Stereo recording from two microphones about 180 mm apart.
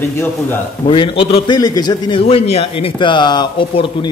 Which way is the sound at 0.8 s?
30° left (ahead or behind).